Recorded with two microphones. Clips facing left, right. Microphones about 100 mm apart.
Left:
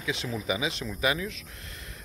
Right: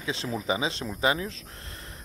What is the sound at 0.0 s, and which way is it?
Speech, 35° right (ahead or behind).